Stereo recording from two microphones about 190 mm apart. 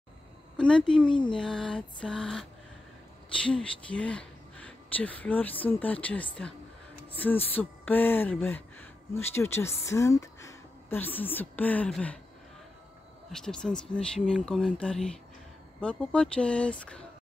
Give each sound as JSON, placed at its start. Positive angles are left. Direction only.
{"t": 0.6, "sound": "speech", "side_deg": 5}
{"t": 1.0, "sound": "speech", "side_deg": 25}
{"t": 1.3, "sound": "speech", "side_deg": 5}
{"t": 3.4, "sound": "speech", "side_deg": 5}
{"t": 13.3, "sound": "speech", "side_deg": 5}